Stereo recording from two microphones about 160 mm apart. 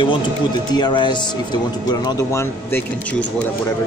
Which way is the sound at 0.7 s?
30° left (ahead or behind).